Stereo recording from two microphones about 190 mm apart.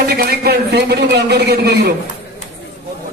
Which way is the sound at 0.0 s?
55° right (ahead or behind).